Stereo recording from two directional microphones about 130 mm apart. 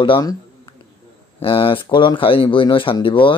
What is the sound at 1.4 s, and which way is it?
Speech, 45° left (ahead or behind).